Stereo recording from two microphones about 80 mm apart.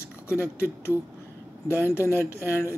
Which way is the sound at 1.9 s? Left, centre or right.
Left.